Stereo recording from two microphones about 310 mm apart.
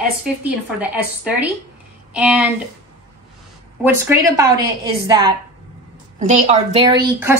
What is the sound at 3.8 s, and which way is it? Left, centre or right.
A woman's voice, centre.